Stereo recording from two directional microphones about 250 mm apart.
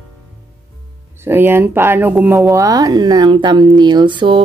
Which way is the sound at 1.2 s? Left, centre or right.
Centre.